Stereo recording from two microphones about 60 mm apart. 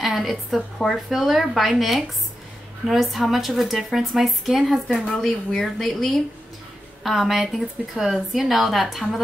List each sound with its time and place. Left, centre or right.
0.0 s a woman's voice: centre
5.1 s a woman's voice: centre